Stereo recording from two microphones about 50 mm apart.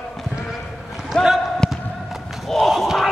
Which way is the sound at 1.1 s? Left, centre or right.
Centre.